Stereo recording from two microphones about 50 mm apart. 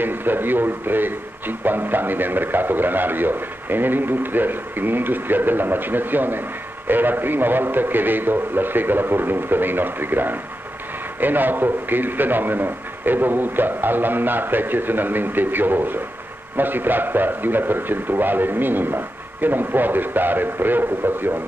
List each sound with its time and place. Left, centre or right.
0.0 s speech: right